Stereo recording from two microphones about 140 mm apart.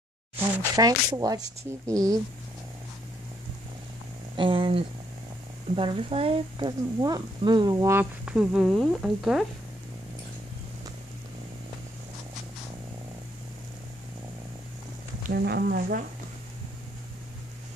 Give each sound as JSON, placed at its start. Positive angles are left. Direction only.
{"t": 0.6, "sound": "speech", "side_deg": -25}
{"t": 4.4, "sound": "speech", "side_deg": -40}
{"t": 7.0, "sound": "speech", "side_deg": -30}
{"t": 15.2, "sound": "speech", "side_deg": -90}